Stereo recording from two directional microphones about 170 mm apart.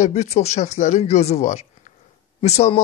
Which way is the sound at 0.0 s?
40° left (ahead or behind).